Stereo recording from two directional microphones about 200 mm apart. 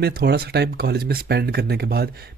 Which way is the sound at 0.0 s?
50° right (ahead or behind).